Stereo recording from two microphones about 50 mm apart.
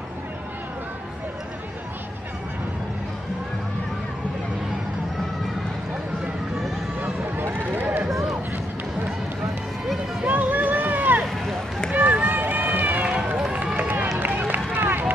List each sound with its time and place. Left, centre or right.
7.0 s run: right
10.2 s run: right